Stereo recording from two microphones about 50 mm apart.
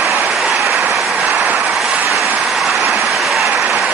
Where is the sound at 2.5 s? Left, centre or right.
Centre.